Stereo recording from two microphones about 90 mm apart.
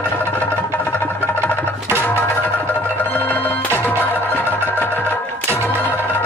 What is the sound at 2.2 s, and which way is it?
Music, 20° left (ahead or behind).